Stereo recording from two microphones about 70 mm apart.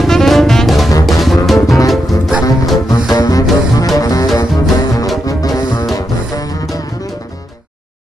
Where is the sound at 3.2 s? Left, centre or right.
Left.